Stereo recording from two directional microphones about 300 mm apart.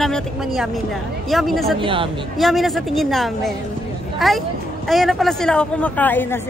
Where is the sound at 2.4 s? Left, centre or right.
Centre.